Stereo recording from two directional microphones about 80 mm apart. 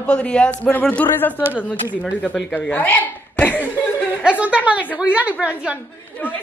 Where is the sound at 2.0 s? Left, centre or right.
Centre.